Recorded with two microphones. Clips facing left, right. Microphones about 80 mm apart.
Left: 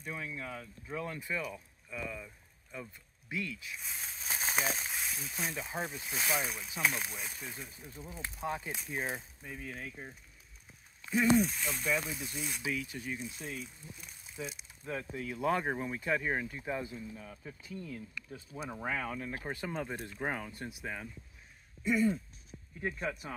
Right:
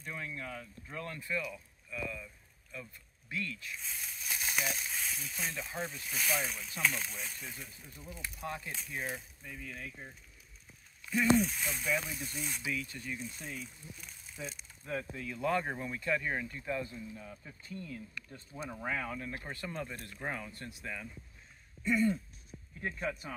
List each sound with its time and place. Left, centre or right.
0.0 s speech: centre
3.9 s a sound: left
4.9 s speech: centre
7.9 s speech: left
11.3 s speech: centre
12.8 s speech: centre
18.5 s speech: centre
19.5 s speech: centre
21.8 s speech: centre